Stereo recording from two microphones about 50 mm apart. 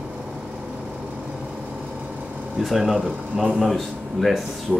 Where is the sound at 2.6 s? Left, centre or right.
Centre.